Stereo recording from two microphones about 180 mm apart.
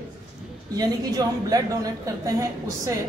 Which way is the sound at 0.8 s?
20° right (ahead or behind).